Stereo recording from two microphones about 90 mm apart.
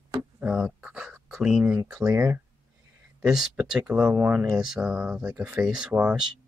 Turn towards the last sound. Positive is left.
turn(degrees=-15)  # may be behind; listen again after turning